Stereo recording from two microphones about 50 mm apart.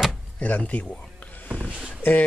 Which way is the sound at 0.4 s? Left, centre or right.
Left.